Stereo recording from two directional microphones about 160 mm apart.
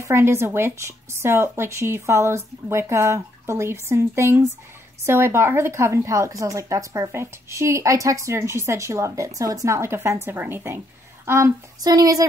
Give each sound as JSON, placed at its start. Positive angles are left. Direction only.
{"t": 0.0, "sound": "a woman's voice", "side_deg": -15}